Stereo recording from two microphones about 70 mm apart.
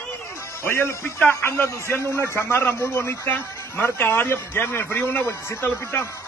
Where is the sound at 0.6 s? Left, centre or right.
Left.